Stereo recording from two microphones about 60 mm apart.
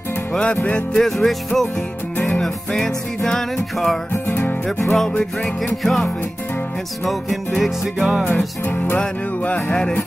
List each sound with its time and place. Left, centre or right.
0.3 s music: centre
0.9 s music: centre
4.1 s music: left
4.8 s music: centre
7.1 s music: centre
8.3 s music: left